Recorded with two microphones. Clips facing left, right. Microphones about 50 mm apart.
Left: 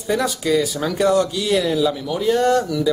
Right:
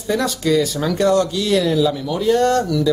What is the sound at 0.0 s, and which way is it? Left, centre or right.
Speech, centre.